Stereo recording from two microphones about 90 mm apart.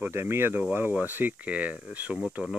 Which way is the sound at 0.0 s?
25° right (ahead or behind).